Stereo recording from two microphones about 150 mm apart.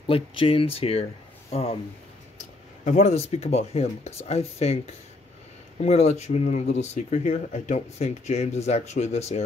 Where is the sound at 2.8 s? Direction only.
50° left (ahead or behind).